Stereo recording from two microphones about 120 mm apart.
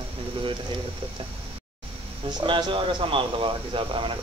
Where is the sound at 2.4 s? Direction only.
45° right (ahead or behind).